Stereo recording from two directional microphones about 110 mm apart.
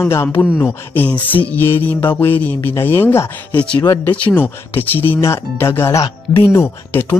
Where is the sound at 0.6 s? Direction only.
15° left (ahead or behind).